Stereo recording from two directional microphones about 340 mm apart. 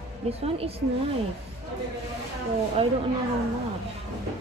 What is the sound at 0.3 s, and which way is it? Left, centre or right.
Speech, centre.